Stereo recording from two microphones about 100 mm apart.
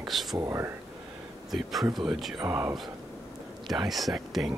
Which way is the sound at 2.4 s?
25° right (ahead or behind).